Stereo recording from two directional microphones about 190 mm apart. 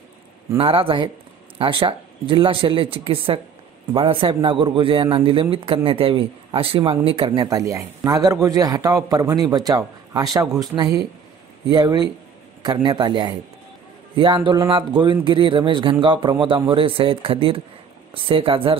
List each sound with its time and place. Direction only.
0.6 s a man's voice: 30° right (ahead or behind)